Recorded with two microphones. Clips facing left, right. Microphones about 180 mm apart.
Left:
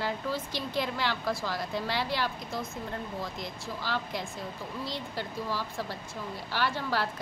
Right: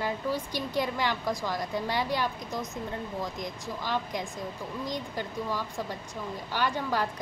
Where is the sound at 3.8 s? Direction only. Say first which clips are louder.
Right 2 dB; 15° right (ahead or behind).